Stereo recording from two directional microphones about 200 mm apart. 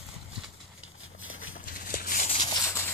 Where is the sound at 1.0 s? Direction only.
85° left.